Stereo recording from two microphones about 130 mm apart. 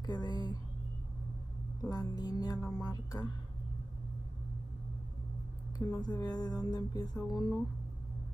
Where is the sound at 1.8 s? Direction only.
30° left (ahead or behind).